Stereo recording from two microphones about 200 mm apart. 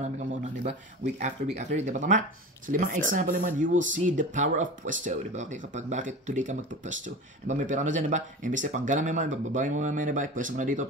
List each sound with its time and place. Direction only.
0.0 s speech: 35° right (ahead or behind)